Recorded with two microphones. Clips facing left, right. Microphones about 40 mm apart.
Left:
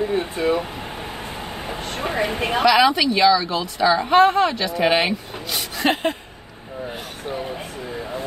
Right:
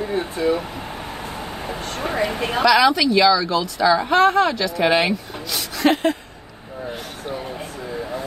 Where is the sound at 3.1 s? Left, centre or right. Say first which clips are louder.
Right 1 dB; left.